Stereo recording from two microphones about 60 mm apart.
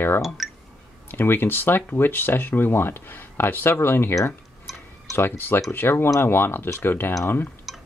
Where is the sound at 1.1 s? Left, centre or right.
Left.